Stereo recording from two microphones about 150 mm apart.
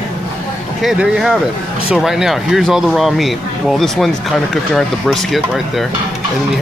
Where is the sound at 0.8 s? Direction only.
5° right (ahead or behind).